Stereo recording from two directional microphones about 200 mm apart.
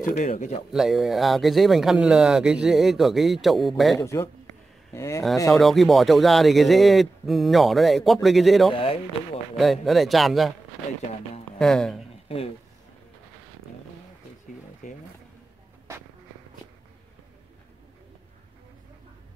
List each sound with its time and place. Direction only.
0.0 s speech: 40° left (ahead or behind)
0.7 s speech: centre (ahead or behind)
4.0 s speech: 15° left (ahead or behind)
5.5 s speech: centre (ahead or behind)
8.7 s speech: 30° left (ahead or behind)
9.6 s speech: centre (ahead or behind)
11.5 s speech: 5° left (ahead or behind)
12.3 s speech: 30° left (ahead or behind)
14.8 s bee: 40° left (ahead or behind)